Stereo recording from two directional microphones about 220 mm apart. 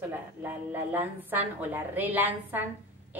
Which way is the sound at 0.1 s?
10° right (ahead or behind).